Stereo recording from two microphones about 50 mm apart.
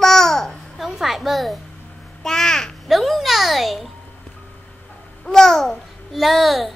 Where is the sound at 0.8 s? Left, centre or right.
Centre.